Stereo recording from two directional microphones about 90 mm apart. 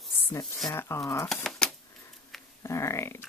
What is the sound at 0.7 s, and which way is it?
Speech, 35° left (ahead or behind).